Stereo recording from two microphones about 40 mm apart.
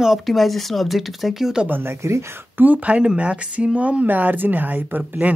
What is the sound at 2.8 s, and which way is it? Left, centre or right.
Speech, right.